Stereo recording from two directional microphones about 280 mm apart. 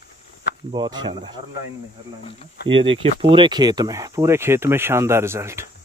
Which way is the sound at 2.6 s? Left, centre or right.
Centre.